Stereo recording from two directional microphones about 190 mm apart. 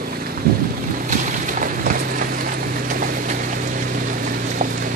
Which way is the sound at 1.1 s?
40° right (ahead or behind).